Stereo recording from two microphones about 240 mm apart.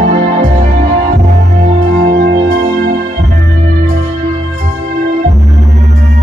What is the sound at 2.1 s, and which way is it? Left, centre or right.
Music, right.